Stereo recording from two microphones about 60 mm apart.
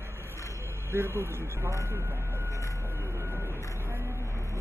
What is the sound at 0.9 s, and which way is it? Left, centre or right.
Vehicle, right.